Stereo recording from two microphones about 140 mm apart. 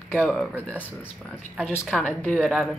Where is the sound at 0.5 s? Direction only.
10° left (ahead or behind).